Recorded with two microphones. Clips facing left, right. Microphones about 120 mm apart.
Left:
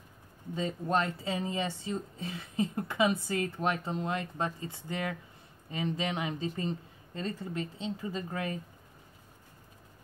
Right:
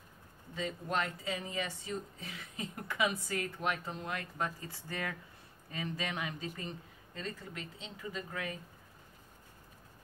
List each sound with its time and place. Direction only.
0.6 s speech: 35° left (ahead or behind)